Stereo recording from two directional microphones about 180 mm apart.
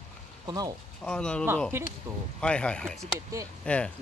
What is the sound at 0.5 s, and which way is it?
Speech, 20° right (ahead or behind).